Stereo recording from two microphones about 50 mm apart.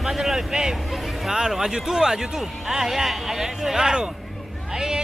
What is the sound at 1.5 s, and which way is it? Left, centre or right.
A man's voice, centre.